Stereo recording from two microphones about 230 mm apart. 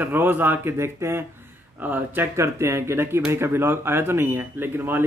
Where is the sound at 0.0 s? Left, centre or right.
Centre.